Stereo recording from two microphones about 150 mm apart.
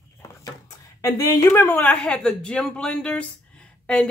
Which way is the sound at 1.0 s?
20° left (ahead or behind).